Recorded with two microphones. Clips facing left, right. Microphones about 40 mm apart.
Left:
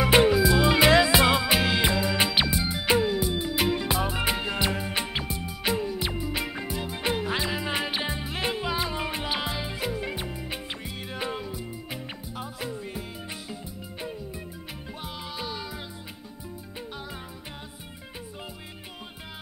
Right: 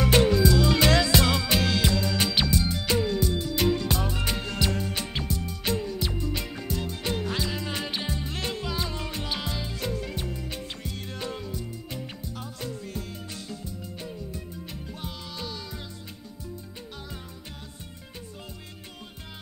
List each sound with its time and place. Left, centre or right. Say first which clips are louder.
0.0 s music: left 1 dB; centre
15.0 s music: left 4 dB; centre